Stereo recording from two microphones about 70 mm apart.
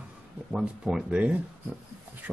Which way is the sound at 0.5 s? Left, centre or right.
Centre.